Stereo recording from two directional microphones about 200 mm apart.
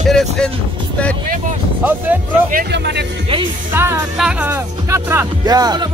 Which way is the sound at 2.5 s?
55° right (ahead or behind).